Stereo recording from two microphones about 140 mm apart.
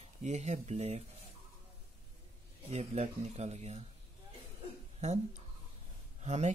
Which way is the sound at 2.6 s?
50° right (ahead or behind).